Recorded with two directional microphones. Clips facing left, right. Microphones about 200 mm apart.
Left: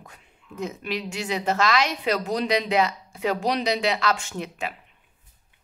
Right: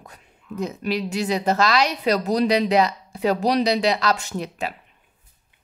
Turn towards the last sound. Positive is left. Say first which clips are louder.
# right 3 dB
turn(degrees=-35)  # may be behind; listen again after turning